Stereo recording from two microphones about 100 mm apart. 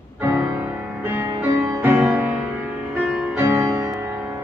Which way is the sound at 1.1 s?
30° right (ahead or behind).